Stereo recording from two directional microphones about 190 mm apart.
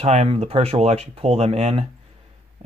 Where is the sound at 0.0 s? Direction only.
35° right (ahead or behind).